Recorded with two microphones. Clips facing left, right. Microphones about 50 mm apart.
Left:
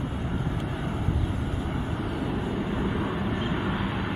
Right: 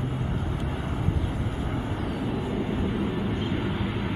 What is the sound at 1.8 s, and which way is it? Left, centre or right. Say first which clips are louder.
Vehicle: even; centre.